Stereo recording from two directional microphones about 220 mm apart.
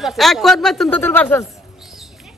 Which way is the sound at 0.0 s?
Centre (ahead or behind).